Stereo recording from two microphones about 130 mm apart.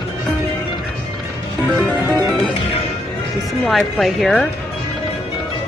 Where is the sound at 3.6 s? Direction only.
Centre (ahead or behind).